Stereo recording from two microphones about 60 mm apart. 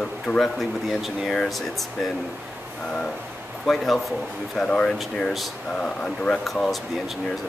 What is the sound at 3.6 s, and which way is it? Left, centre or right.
Speech, centre.